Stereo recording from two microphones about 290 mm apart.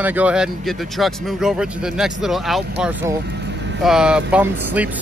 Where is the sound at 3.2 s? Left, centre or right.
Right.